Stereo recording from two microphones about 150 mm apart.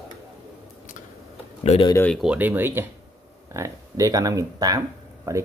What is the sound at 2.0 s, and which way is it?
Speech, centre (ahead or behind).